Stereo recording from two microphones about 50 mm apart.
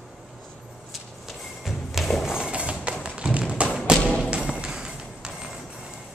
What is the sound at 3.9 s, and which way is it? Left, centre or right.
Music, centre.